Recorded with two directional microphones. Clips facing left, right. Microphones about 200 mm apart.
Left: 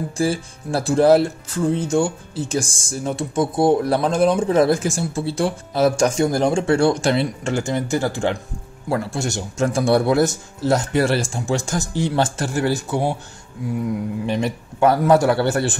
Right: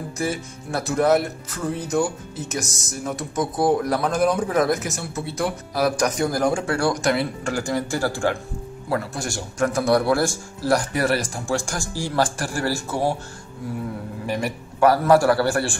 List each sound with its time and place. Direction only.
0.2 s speech: 30° left (ahead or behind)
14.2 s speech: 20° left (ahead or behind)